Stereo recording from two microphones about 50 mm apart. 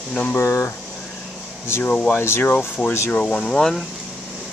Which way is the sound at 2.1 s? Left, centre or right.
Left.